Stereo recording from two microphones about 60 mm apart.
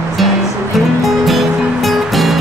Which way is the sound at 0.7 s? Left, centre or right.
Centre.